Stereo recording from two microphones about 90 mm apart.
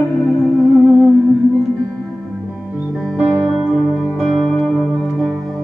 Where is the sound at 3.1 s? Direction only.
15° right (ahead or behind).